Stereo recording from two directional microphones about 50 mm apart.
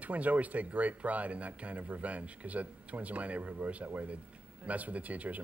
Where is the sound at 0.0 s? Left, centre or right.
Right.